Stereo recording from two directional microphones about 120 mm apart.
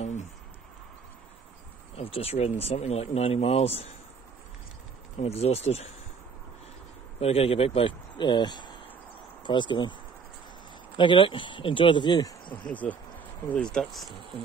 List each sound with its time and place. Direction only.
0.0 s a sound: 80° left
2.0 s speech: 55° left (ahead or behind)
5.2 s speech: 60° left (ahead or behind)
7.2 s speech: 55° left (ahead or behind)
11.0 s speech: 45° left (ahead or behind)
12.6 s speech: 15° left (ahead or behind)